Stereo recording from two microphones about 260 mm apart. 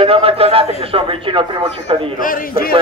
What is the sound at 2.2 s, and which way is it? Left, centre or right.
Speech, left.